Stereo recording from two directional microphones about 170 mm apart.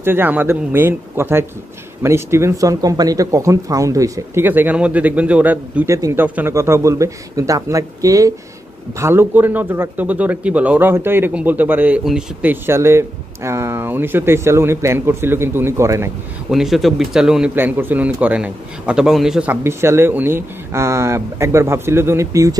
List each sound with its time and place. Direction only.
0.0 s speech: 10° right (ahead or behind)
16.4 s speech: centre (ahead or behind); by 22.6 s 20° right (ahead or behind)